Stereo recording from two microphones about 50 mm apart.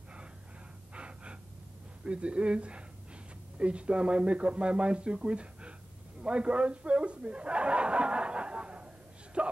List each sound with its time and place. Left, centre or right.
0.9 s gasp: right
2.0 s speech: right
6.2 s chuckle: right